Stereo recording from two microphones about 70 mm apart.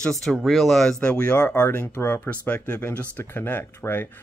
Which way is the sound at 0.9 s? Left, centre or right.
Left.